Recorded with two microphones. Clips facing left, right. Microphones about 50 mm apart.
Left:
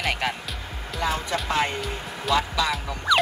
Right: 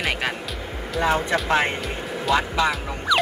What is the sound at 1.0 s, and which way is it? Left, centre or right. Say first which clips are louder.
Speech: right 5 dB; right.